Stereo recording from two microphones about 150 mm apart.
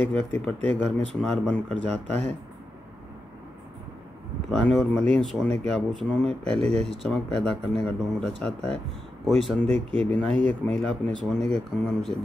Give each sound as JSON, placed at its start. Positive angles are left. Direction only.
{"t": 0.1, "sound": "speech", "side_deg": 5}
{"t": 4.5, "sound": "speech", "side_deg": 0}
{"t": 9.6, "sound": "speech", "side_deg": -50}
{"t": 10.2, "sound": "speech", "side_deg": 5}